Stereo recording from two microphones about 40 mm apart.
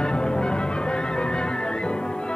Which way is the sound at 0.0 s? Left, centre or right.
Left.